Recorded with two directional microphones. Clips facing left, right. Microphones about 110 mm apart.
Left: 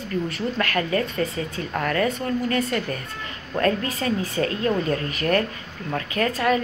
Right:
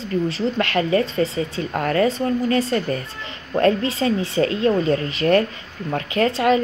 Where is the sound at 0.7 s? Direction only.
25° right (ahead or behind).